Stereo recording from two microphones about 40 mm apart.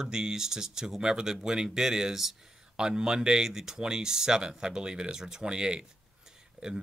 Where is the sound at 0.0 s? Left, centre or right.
Centre.